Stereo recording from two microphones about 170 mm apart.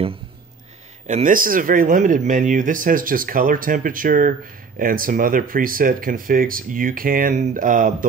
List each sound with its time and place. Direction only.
1.0 s speech: 45° right (ahead or behind)